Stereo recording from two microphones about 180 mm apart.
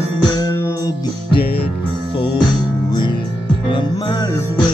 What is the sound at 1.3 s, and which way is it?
Music, 60° left (ahead or behind).